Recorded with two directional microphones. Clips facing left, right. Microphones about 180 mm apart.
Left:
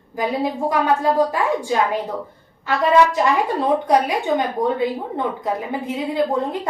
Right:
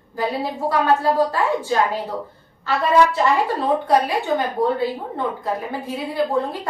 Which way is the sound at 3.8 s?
20° left (ahead or behind).